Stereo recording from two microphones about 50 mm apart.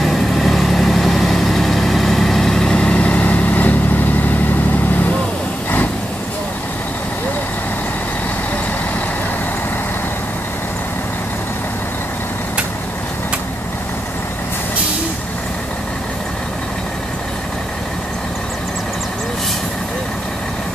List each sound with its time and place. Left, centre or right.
0.0 s vehicle: centre
2.9 s vehicle: left